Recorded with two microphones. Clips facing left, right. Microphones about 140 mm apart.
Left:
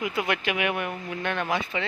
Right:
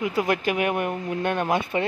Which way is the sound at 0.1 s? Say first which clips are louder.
Right 4 dB; 35° right (ahead or behind).